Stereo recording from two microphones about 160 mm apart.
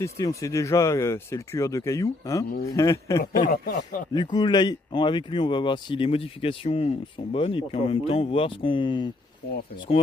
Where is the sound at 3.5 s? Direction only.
65° left (ahead or behind).